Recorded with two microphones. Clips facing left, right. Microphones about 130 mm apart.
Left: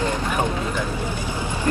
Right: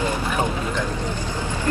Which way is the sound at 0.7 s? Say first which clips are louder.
Even; 10° left (ahead or behind).